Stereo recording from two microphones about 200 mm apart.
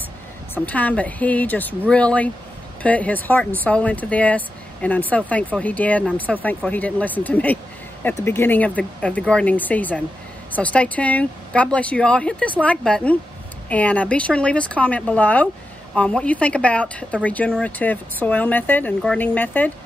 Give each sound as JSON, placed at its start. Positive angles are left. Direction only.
{"t": 0.7, "sound": "speech", "side_deg": 5}